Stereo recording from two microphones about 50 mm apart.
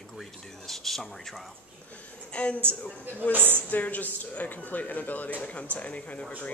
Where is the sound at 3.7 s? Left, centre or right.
Left.